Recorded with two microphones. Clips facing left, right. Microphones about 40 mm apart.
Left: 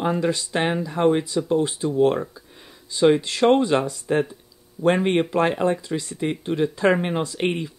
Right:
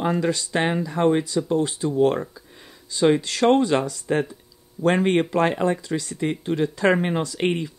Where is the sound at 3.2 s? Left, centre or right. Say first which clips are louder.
Even; centre.